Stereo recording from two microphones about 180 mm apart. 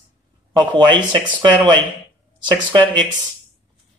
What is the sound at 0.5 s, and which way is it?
A man's voice, 25° right (ahead or behind).